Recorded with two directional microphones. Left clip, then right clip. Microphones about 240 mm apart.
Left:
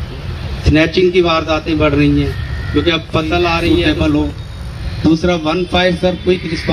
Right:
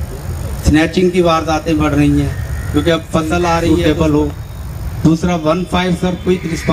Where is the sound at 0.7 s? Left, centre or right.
Right.